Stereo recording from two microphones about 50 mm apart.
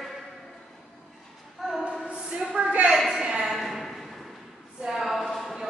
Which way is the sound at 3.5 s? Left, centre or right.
Centre.